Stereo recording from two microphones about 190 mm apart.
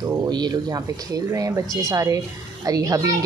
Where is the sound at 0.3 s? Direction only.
25° right (ahead or behind).